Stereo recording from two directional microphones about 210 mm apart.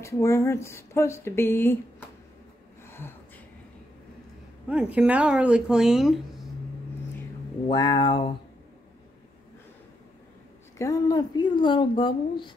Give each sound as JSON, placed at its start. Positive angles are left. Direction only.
{"t": 0.0, "sound": "speech", "side_deg": 15}
{"t": 4.6, "sound": "speech", "side_deg": -5}
{"t": 7.6, "sound": "speech", "side_deg": 20}
{"t": 10.8, "sound": "speech", "side_deg": 15}